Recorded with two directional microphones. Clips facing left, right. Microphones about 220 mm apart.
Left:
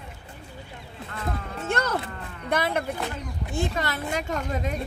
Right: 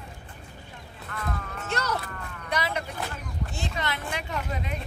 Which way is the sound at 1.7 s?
55° left (ahead or behind).